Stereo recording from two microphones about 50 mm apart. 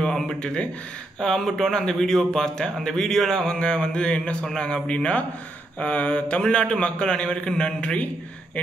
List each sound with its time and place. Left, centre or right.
0.0 s a man's voice: centre